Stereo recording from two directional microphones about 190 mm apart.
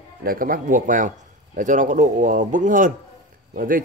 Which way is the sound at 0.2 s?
50° right (ahead or behind).